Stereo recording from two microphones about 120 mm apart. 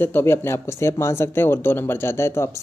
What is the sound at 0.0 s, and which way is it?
Speech, 20° left (ahead or behind).